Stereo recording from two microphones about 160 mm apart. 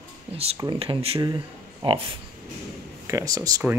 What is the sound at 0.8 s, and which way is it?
Speech, 35° right (ahead or behind).